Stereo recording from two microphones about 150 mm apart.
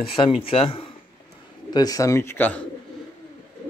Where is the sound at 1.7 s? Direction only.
25° left (ahead or behind).